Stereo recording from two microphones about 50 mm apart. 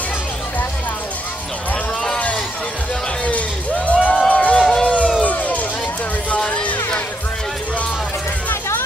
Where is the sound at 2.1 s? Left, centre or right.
Left.